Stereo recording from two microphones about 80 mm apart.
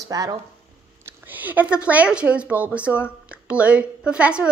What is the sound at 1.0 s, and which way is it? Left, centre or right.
A woman's voice, right.